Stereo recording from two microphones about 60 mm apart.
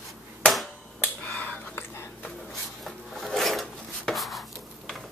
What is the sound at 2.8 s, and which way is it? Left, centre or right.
Chopping, centre.